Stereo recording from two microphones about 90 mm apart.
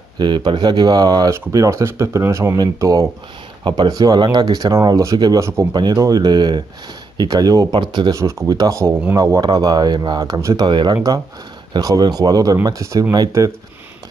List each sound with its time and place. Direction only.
0.2 s speech: 60° right (ahead or behind)
1.3 s speech: 35° right (ahead or behind)
2.5 s speech: 45° right (ahead or behind)
3.6 s speech: 65° right (ahead or behind)
3.9 s speech: 45° right (ahead or behind)
7.8 s speech: 60° right (ahead or behind)
8.1 s speech: 35° right (ahead or behind)
9.4 s speech: 50° right (ahead or behind)